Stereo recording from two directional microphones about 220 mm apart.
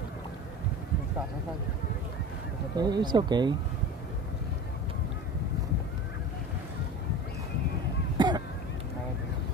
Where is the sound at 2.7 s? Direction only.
20° right (ahead or behind).